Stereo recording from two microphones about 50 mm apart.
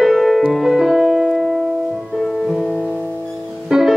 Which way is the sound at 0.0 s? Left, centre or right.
Centre.